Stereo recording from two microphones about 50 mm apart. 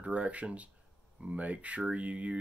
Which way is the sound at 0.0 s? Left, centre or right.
Right.